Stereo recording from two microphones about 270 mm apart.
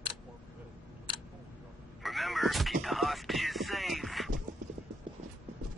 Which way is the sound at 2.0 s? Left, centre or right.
Centre.